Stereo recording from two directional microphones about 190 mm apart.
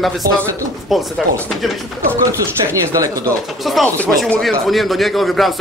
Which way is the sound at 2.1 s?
15° right (ahead or behind).